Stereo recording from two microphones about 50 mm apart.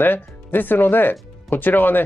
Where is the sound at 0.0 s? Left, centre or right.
Left.